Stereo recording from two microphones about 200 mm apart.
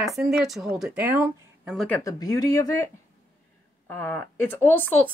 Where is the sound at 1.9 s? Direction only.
15° left (ahead or behind).